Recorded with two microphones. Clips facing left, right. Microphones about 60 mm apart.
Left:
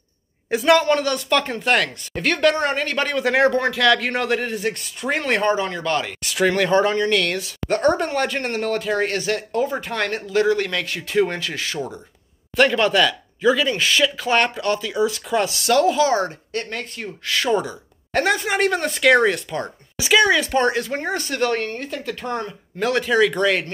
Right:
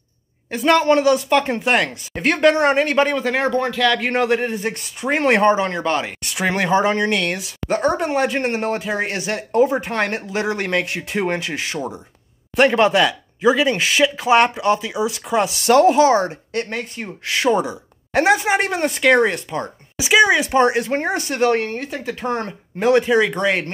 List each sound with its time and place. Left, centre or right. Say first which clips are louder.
0.5 s speech: even; centre
0.8 s speech: right 5 dB; centre
5.2 s speech: right 6 dB; right
7.2 s speech: left 1 dB; centre
7.6 s speech: even; centre
9.5 s speech: right 6 dB; right
15.6 s speech: right 6 dB; right
22.8 s speech: right 3 dB; centre